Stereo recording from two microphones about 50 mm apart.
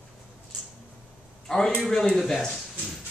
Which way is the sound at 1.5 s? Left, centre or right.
Centre.